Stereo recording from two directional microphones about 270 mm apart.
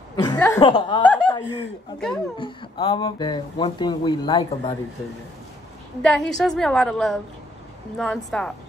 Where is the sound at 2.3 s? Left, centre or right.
Centre.